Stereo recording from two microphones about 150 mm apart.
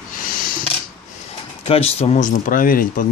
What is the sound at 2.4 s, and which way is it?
Speech, 70° left (ahead or behind).